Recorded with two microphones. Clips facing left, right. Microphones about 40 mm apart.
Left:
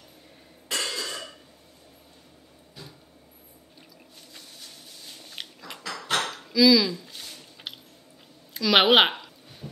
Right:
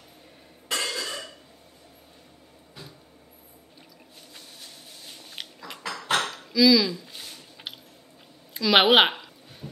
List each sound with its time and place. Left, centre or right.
0.7 s cough: right
5.0 s biting: centre
5.4 s dishes: centre
5.8 s dishes: right
6.0 s dishes: centre
6.3 s a sound: centre